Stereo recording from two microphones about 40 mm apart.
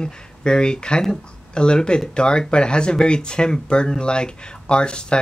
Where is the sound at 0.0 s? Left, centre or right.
Left.